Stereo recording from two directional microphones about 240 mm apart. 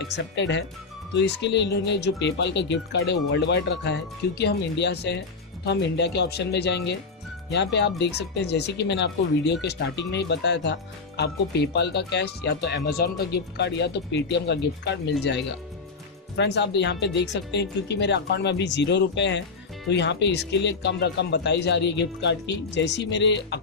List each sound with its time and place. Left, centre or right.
0.0 s speech: left
16.3 s speech: left